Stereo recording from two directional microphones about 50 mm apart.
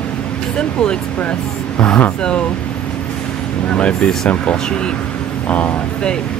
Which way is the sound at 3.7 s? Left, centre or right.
Left.